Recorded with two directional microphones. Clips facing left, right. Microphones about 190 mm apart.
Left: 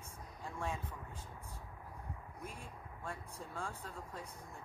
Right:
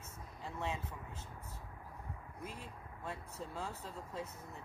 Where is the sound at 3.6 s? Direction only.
25° right (ahead or behind).